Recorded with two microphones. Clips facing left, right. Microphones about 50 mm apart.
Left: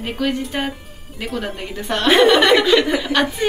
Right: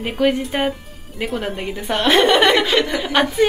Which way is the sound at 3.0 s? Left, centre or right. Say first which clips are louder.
Right 1 dB; centre.